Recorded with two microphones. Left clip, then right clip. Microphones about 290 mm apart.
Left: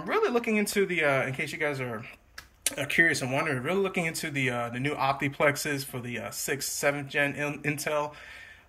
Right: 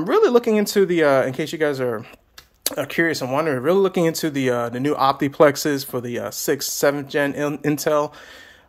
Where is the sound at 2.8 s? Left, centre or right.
Centre.